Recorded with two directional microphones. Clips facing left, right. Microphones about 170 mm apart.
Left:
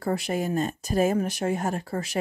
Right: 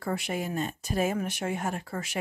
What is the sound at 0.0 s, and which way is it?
Speech, 35° left (ahead or behind).